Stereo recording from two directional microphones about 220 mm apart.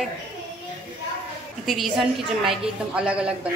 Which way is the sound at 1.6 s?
Centre (ahead or behind).